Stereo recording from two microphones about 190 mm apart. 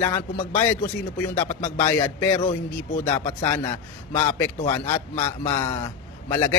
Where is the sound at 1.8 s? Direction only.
15° left (ahead or behind).